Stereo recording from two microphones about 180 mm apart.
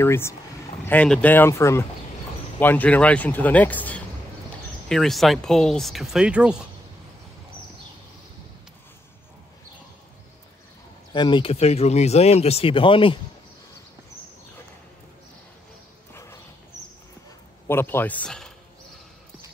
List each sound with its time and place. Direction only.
0.0 s speech: 15° left (ahead or behind); by 6.7 s 5° right (ahead or behind)
11.1 s speech: 25° left (ahead or behind)
16.1 s clip-clop: 15° left (ahead or behind)
17.6 s speech: 10° left (ahead or behind)